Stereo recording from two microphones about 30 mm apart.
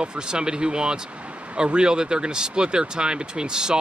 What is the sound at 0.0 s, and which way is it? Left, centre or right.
Speech, right.